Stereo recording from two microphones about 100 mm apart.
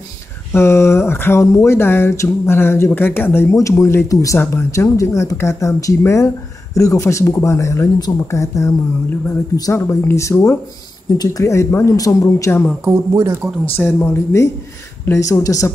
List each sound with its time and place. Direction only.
0.5 s speech: 25° left (ahead or behind)
12.8 s speech: 25° right (ahead or behind)
13.7 s speech: 25° left (ahead or behind)